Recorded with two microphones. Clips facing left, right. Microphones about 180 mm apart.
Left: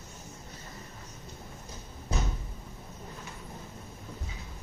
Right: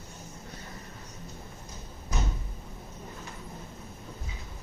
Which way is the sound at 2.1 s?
30° left (ahead or behind).